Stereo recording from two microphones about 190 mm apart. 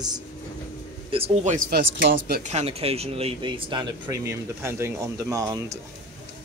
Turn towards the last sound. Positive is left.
turn(degrees=-15)  # may be behind; listen again after turning